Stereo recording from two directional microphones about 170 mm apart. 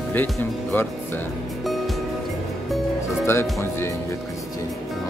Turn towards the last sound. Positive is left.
turn(degrees=15)  # may be behind; listen again after turning